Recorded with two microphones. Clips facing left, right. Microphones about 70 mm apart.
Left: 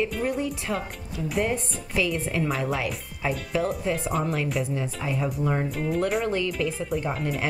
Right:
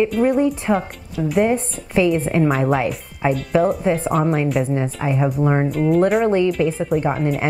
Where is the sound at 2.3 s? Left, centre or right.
Right.